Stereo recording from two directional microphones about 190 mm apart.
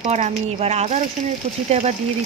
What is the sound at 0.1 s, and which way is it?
Speech, 35° right (ahead or behind).